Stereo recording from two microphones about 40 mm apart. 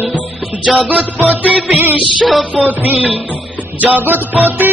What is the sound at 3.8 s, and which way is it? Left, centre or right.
Music, right.